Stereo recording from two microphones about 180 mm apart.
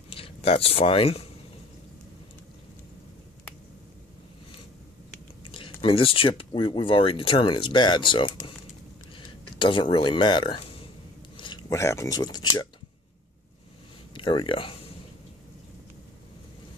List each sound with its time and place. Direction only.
0.1 s speech: 30° left (ahead or behind)
5.4 s speech: 30° left (ahead or behind)
9.1 s a sound: 25° left (ahead or behind)
11.7 s speech: 15° left (ahead or behind)
14.1 s speech: 30° left (ahead or behind)